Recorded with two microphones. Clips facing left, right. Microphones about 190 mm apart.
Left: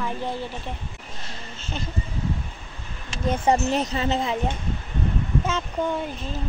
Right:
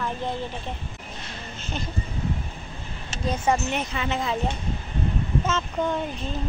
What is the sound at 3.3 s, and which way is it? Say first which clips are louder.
Speech: left 3 dB; 35° left (ahead or behind).